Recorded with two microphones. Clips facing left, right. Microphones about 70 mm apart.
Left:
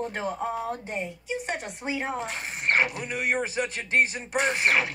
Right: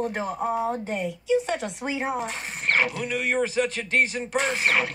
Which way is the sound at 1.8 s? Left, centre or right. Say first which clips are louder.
Right 3 dB; centre.